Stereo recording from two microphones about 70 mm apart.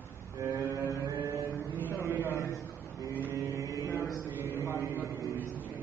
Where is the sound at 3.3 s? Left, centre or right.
Right.